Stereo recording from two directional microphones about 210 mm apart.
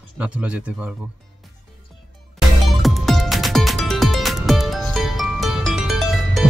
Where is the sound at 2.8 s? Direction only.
Centre (ahead or behind).